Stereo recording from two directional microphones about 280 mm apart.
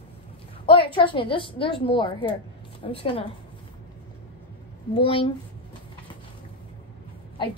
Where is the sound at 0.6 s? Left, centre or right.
Centre.